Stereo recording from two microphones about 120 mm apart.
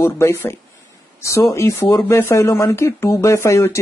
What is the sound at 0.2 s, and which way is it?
Speech, 20° left (ahead or behind).